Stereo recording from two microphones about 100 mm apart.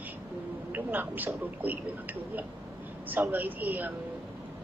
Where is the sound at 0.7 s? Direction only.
15° right (ahead or behind).